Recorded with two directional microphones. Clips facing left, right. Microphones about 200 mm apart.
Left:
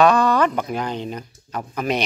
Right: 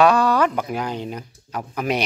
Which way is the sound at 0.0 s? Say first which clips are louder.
Even; 10° right (ahead or behind).